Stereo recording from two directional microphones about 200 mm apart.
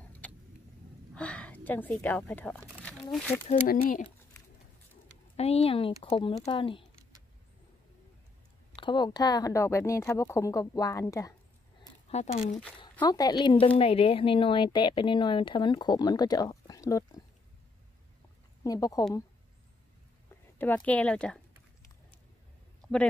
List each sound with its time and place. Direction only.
0.2 s vehicle: 5° left (ahead or behind)
1.1 s speech: 5° left (ahead or behind)
3.4 s speech: 40° left (ahead or behind)
5.3 s speech: 30° left (ahead or behind)
8.7 s a woman's voice: 25° left (ahead or behind)
12.1 s speech: 35° left (ahead or behind)
13.0 s speech: 20° left (ahead or behind)
18.6 s a woman's voice: 20° left (ahead or behind)
20.5 s a woman's voice: 10° left (ahead or behind)